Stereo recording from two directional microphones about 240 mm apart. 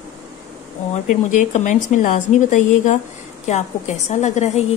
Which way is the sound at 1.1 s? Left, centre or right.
Left.